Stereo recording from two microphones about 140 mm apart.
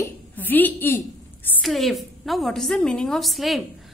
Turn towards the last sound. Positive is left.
turn(degrees=0)  # may be behind; listen again after turning